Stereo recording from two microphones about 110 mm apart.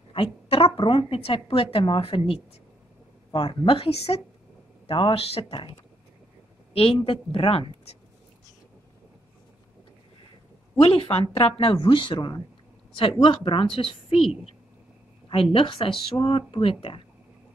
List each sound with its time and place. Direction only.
0.1 s a woman's voice: 55° left (ahead or behind)
4.8 s a woman's voice: 55° left (ahead or behind)
6.7 s a woman's voice: 60° left (ahead or behind)
10.8 s a woman's voice: 55° left (ahead or behind)
15.5 s a woman's voice: 55° left (ahead or behind)